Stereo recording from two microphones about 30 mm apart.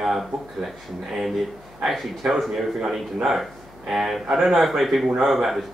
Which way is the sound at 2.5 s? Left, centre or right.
Centre.